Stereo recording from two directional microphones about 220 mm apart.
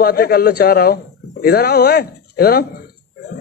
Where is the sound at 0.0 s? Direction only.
45° left (ahead or behind).